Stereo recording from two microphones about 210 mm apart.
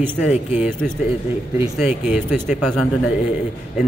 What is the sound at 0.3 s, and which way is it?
Speech, 30° left (ahead or behind).